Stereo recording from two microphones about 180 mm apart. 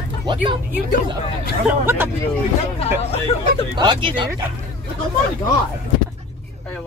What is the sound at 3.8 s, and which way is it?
Speech, 25° right (ahead or behind).